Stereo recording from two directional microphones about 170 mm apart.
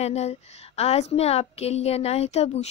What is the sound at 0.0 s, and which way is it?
A woman's voice, 40° left (ahead or behind).